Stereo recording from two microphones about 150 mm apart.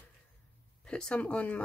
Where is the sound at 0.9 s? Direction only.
5° left (ahead or behind).